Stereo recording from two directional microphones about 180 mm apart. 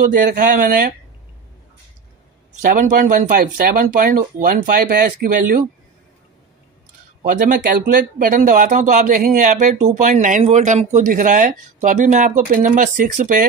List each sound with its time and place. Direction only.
0.1 s speech: 50° right (ahead or behind)
2.6 s speech: 45° right (ahead or behind)
7.2 s speech: 50° right (ahead or behind)